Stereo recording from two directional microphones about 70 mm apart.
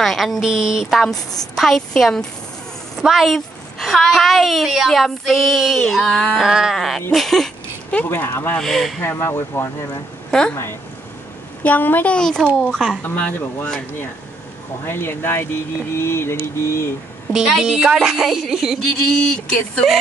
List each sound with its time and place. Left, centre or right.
0.0 s a woman's voice: centre
0.8 s a woman's voice: centre
1.3 s a woman's voice: left
1.6 s a woman's voice: centre
6.4 s a woman's voice: centre
8.1 s speech: left
8.5 s a woman's voice: centre
9.0 s speech: left
12.2 s speech: centre
13.0 s speech: left
14.9 s speech: left
17.3 s a woman's voice: centre
19.1 s speech: centre